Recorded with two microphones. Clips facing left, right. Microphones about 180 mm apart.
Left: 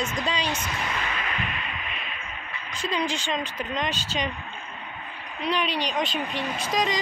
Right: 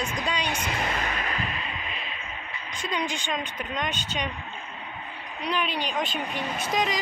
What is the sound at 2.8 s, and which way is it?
Speech, centre (ahead or behind).